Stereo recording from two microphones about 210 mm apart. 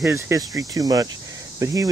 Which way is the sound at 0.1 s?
15° right (ahead or behind).